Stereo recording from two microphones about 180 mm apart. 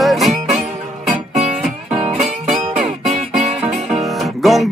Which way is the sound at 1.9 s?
35° right (ahead or behind).